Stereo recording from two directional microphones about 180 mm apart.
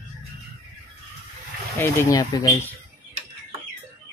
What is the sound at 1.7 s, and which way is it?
Speech, 15° left (ahead or behind).